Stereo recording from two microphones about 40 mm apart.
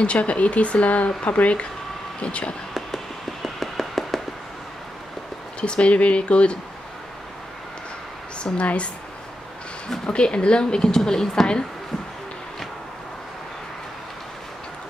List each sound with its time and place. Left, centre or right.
0.0 s speech: left
3.4 s a sound: centre
5.6 s speech: left
8.5 s speech: left
10.0 s speech: left; by 11.4 s centre